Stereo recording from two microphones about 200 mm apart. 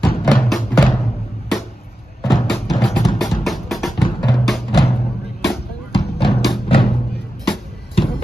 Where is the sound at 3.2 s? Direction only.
Centre (ahead or behind).